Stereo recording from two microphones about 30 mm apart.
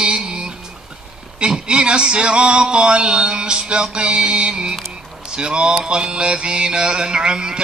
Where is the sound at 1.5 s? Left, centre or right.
Right.